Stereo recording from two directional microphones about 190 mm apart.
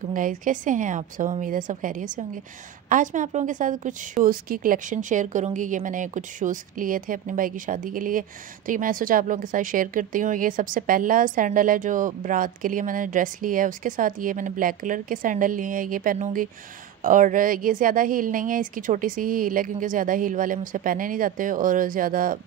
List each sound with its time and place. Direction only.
0.1 s a woman's voice: 45° right (ahead or behind)